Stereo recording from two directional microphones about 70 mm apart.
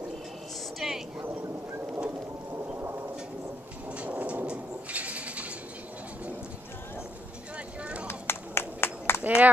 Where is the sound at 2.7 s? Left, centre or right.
Right.